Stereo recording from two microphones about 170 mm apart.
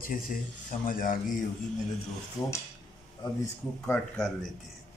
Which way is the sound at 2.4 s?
20° left (ahead or behind).